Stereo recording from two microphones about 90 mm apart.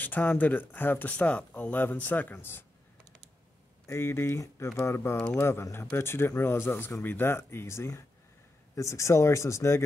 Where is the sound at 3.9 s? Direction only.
30° left (ahead or behind).